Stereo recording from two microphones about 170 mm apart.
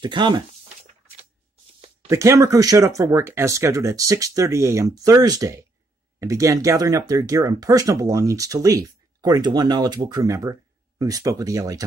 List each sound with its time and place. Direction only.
0.0 s speech: 25° right (ahead or behind)
2.0 s speech: 15° right (ahead or behind)